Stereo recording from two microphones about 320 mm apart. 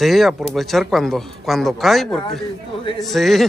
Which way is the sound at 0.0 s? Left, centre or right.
Centre.